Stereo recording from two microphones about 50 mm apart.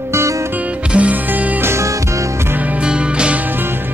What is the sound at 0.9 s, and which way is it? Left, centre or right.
Music, right.